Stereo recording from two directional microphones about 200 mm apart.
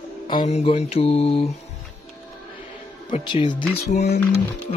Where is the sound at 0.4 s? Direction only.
35° left (ahead or behind).